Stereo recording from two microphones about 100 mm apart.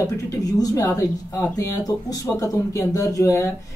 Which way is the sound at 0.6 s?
35° left (ahead or behind).